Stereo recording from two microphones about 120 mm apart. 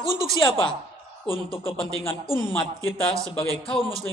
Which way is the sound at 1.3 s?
50° left (ahead or behind).